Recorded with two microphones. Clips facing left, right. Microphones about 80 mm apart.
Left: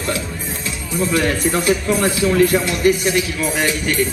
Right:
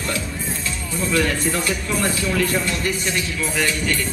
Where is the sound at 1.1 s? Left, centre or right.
Centre.